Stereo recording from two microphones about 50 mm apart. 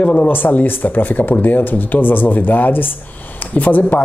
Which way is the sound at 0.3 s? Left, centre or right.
Left.